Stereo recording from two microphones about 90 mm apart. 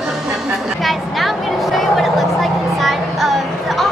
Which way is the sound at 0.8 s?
Centre (ahead or behind).